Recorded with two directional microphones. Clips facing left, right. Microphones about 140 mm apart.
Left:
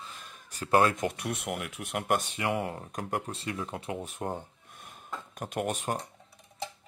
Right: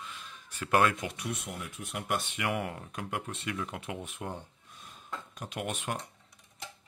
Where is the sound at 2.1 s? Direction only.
40° left (ahead or behind).